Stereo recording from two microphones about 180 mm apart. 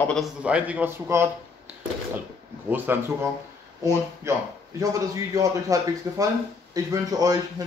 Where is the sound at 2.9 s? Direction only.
10° right (ahead or behind).